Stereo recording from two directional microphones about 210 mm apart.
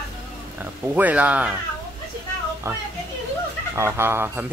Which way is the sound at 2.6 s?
15° right (ahead or behind).